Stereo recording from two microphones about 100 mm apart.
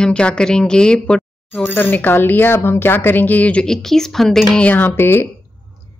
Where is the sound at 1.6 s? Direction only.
20° left (ahead or behind).